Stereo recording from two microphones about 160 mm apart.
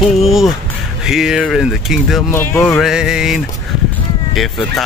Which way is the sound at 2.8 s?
5° right (ahead or behind).